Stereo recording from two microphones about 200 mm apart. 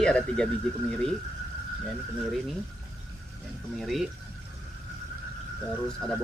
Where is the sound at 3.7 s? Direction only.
Centre (ahead or behind).